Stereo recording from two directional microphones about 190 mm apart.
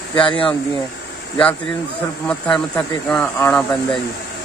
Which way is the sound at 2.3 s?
5° left (ahead or behind).